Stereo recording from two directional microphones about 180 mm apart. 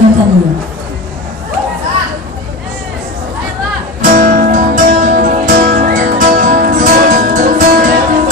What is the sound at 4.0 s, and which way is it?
Music, 50° right (ahead or behind).